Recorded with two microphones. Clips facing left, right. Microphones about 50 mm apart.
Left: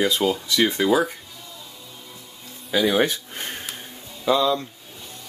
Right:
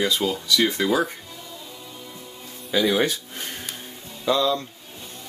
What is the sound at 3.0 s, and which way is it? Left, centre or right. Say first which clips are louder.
Speech: even; left.